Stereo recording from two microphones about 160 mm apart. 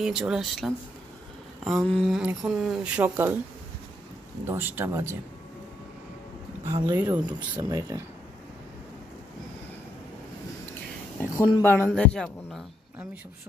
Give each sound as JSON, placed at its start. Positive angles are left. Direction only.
{"t": 0.0, "sound": "speech", "side_deg": -5}
{"t": 4.5, "sound": "speech", "side_deg": -10}
{"t": 6.6, "sound": "speech", "side_deg": -20}
{"t": 7.0, "sound": "speech", "side_deg": -10}
{"t": 7.5, "sound": "speech", "side_deg": -20}
{"t": 11.3, "sound": "speech", "side_deg": 25}
{"t": 11.9, "sound": "speech", "side_deg": 5}